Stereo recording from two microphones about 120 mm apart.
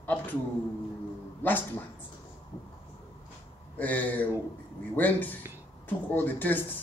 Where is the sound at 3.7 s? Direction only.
10° left (ahead or behind).